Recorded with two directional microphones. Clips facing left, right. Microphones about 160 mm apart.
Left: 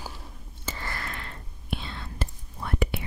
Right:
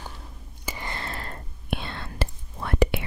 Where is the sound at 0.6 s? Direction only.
15° right (ahead or behind).